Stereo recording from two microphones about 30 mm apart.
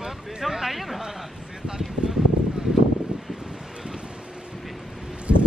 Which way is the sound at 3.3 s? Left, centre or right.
Right.